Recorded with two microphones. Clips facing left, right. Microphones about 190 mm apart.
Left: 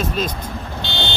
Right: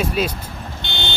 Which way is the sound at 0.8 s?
55° right (ahead or behind).